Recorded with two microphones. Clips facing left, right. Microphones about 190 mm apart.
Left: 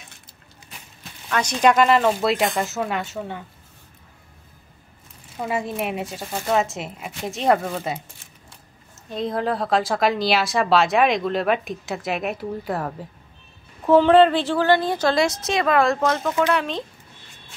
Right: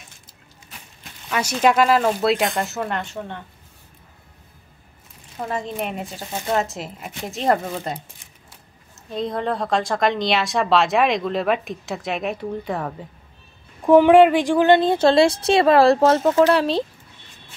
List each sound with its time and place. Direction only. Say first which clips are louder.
1.3 s speech: even; 5° right (ahead or behind)
5.4 s speech: left 1 dB; 10° left (ahead or behind)
9.1 s speech: even; centre (ahead or behind)
13.8 s a woman's voice: right 2 dB; 15° right (ahead or behind); by 16.8 s 35° right (ahead or behind)